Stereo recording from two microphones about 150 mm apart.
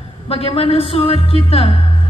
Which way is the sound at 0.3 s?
40° left (ahead or behind).